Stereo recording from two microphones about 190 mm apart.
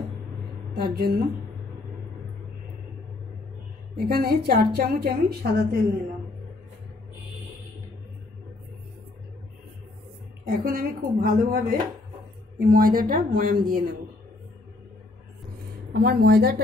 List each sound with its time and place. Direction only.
0.8 s a woman's voice: 55° right (ahead or behind)
3.9 s a woman's voice: 55° right (ahead or behind)
10.4 s a woman's voice: 50° right (ahead or behind)
15.9 s a woman's voice: 55° right (ahead or behind)